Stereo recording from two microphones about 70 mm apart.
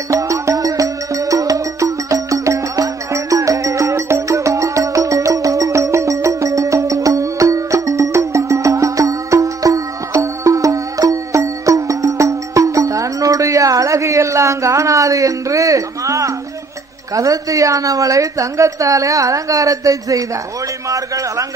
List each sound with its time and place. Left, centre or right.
0.1 s music: right
17.1 s a woman's voice: right
20.9 s a sound: right